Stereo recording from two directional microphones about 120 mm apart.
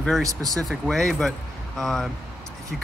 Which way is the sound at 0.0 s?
5° left (ahead or behind).